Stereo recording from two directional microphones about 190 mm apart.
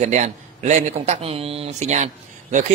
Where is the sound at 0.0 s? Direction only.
40° right (ahead or behind).